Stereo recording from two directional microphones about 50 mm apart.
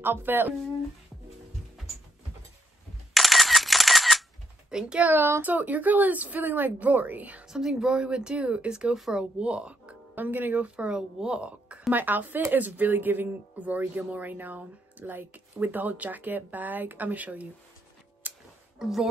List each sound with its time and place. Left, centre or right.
0.0 s speech: right
3.2 s single-lens reflex camera: centre
4.6 s speech: centre
5.4 s speech: right
7.4 s a woman's voice: centre
10.1 s a woman's voice: right; by 11.4 s centre
11.9 s speech: right
18.8 s a woman's voice: centre